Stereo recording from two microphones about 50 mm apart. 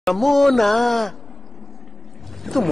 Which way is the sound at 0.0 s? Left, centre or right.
Centre.